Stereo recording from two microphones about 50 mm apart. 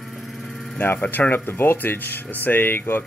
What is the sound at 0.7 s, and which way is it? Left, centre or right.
Speech, left.